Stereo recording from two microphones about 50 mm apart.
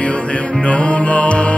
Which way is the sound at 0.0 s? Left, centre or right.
Left.